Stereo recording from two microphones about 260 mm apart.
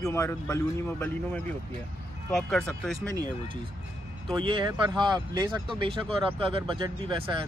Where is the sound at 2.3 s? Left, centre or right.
Centre.